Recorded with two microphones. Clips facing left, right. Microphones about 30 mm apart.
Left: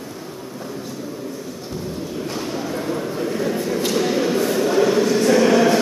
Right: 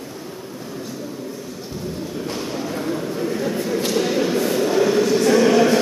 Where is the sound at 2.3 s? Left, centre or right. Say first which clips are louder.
Left 1 dB; centre.